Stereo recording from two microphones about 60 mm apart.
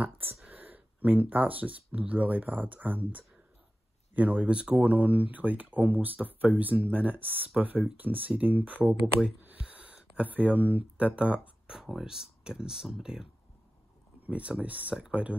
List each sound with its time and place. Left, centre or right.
0.5 s speech: right
9.4 s a sound: right
11.7 s speech: centre
14.2 s speech: right